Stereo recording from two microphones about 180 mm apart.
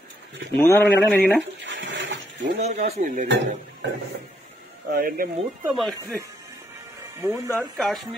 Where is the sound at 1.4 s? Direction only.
85° right.